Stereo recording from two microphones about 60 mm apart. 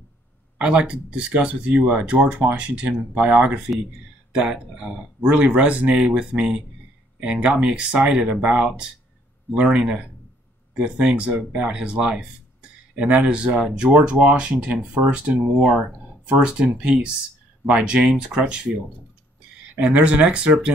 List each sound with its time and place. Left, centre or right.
0.6 s speech: centre
19.7 s speech: right